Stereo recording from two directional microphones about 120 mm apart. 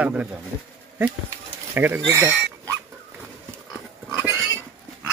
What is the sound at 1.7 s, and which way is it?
Speech, 15° right (ahead or behind).